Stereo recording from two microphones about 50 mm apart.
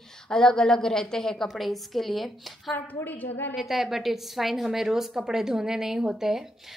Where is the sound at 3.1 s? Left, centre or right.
Left.